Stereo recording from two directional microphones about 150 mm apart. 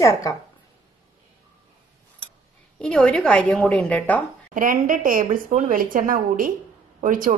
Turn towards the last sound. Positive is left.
turn(degrees=-65)  # may be behind; listen again after turning